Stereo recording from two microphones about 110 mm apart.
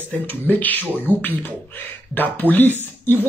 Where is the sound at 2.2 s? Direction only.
15° left (ahead or behind).